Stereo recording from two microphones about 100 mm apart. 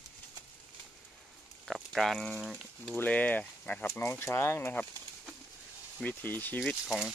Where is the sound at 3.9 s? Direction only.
25° left (ahead or behind).